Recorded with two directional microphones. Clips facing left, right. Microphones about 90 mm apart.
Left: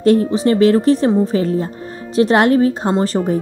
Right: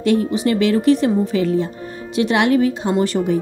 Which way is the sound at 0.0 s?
35° left (ahead or behind).